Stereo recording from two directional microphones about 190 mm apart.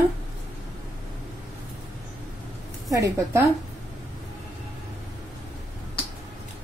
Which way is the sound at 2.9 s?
15° right (ahead or behind).